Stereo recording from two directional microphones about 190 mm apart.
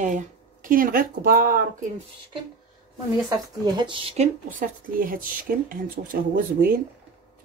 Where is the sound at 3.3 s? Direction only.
20° right (ahead or behind).